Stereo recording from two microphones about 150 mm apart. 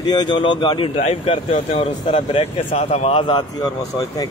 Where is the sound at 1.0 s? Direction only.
45° left (ahead or behind).